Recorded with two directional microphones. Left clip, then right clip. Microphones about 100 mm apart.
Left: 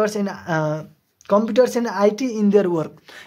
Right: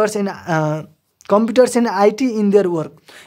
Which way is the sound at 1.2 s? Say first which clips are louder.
Right 3 dB; 75° right (ahead or behind).